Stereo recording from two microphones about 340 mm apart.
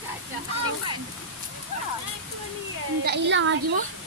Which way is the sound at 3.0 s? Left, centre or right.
Right.